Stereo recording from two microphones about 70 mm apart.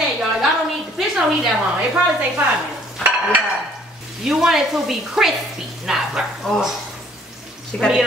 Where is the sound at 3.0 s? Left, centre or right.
Right.